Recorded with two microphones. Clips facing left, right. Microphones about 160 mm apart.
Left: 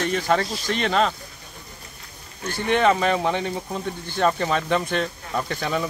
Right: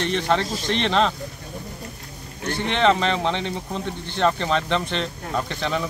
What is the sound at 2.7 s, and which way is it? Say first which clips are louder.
Speech: left 1 dB; 10° left (ahead or behind).